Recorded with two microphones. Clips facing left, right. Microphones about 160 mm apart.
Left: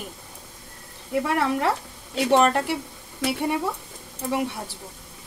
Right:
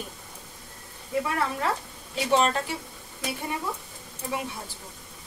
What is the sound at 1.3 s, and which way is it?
A woman's voice, 70° left (ahead or behind).